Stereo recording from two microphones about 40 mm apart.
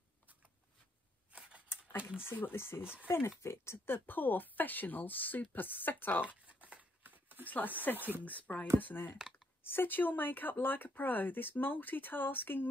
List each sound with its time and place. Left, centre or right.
2.0 s speech: right
2.3 s speech: left
7.1 s a sound: right
7.4 s speech: left
8.7 s speech: left